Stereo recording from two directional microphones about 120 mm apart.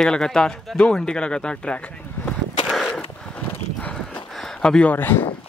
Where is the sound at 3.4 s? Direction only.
15° left (ahead or behind).